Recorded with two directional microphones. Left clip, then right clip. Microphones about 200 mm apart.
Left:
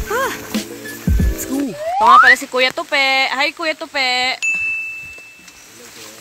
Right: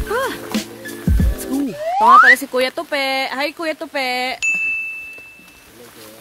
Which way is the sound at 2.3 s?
20° right (ahead or behind).